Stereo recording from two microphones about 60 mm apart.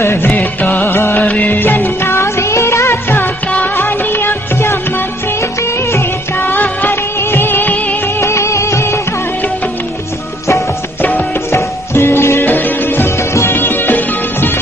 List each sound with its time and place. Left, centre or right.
0.0 s music: left
0.3 s music: left
0.9 s music: left
1.2 s music of bollywood: left
3.7 s music: left
5.6 s music of bollywood: left
6.5 s music of bollywood: left
8.2 s music: left
11.0 s music: left
11.5 s music: left
12.4 s music: left
13.3 s music: left
13.6 s music: left